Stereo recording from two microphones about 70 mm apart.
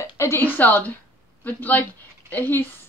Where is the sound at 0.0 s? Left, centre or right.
Left.